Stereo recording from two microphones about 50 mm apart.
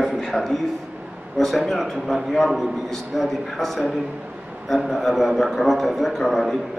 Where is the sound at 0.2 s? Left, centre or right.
Centre.